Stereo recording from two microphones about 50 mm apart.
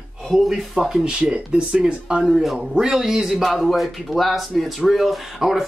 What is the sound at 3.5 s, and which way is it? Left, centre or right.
Speech, centre.